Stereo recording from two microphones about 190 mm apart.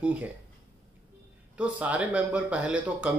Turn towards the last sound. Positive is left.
turn(degrees=-5)  # may be behind; listen again after turning